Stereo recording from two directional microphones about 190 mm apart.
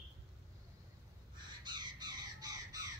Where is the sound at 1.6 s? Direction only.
20° right (ahead or behind).